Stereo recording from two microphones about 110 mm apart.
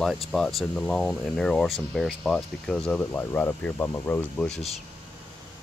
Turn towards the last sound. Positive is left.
turn(degrees=5)  # may be behind; listen again after turning